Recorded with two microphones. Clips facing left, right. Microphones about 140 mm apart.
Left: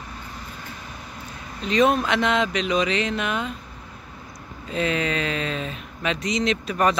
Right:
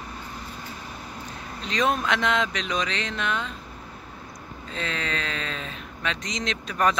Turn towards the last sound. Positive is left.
turn(degrees=5)  # may be behind; listen again after turning